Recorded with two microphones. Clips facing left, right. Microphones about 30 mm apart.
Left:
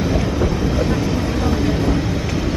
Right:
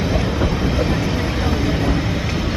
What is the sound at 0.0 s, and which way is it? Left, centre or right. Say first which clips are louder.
Train: left 1 dB; centre.